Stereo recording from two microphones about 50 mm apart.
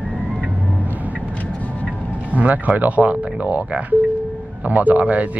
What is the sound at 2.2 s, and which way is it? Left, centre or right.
Speech, right.